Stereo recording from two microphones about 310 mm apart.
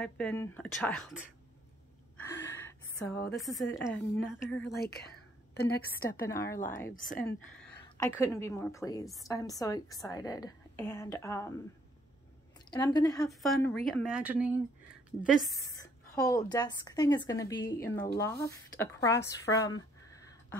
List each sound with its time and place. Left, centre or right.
0.0 s a woman's voice: centre
2.5 s a sound: centre
3.7 s a woman's voice: centre
4.6 s a woman's voice: left
6.0 s speech: centre
6.9 s speech: left
7.5 s a woman's voice: centre
12.7 s speech: centre
13.2 s a woman's voice: centre
15.5 s speech: centre